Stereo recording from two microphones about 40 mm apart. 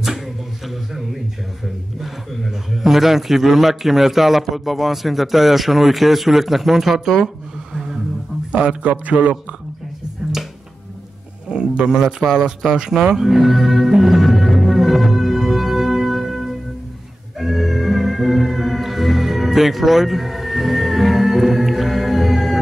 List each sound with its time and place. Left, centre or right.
0.7 s a sound: centre
2.0 s a man's voice: centre
7.7 s a sound: centre
8.5 s a man's voice: right
8.9 s speech: right
11.4 s speech: right
13.3 s music: centre